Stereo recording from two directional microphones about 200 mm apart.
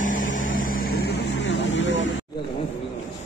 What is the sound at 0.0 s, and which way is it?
Vehicle, 40° left (ahead or behind).